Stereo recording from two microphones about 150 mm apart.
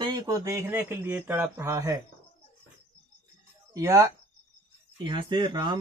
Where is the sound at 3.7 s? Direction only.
20° right (ahead or behind).